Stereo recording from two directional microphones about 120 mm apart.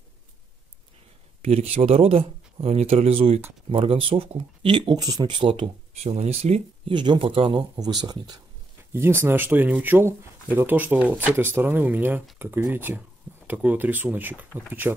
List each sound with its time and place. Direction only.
1.4 s speech: 60° right (ahead or behind)
6.1 s speech: 65° right (ahead or behind)
6.9 s speech: 40° right (ahead or behind)
8.9 s speech: 20° right (ahead or behind)